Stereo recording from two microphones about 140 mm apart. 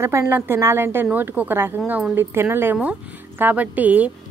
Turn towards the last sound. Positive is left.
turn(degrees=-10)  # may be behind; listen again after turning